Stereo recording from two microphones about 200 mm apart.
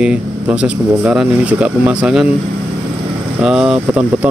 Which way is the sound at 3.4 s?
5° right (ahead or behind).